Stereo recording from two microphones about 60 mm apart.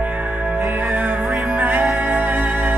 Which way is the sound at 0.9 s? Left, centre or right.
Right.